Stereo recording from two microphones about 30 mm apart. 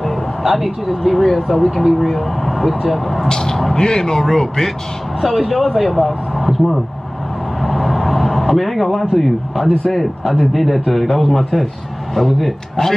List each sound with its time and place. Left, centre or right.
0.0 s speech: centre
1.5 s speech: centre
1.9 s speech: centre
2.5 s vehicle: centre
3.3 s vehicle: left
3.7 s a man's voice: left
5.2 s speech: centre
6.4 s vehicle: centre
8.4 s speech: centre